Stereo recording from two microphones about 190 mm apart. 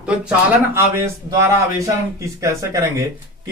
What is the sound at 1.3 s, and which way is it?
Speech, 15° right (ahead or behind).